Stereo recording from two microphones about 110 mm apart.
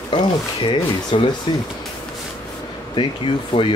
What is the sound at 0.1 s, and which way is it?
Speech, 50° left (ahead or behind).